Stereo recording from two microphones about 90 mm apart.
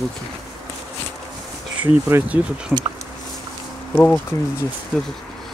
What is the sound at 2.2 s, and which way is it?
Speech, 15° right (ahead or behind).